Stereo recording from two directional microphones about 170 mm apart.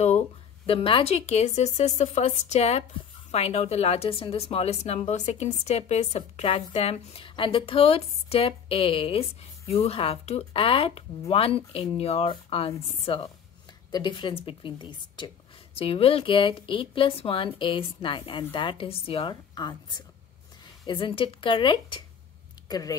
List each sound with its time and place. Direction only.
0.7 s a woman's voice: 30° left (ahead or behind)